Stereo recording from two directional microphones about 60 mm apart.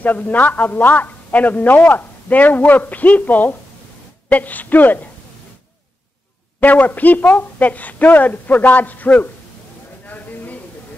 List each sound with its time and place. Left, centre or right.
0.0 s a man's voice: left
6.6 s a man's voice: left
10.0 s a sound: left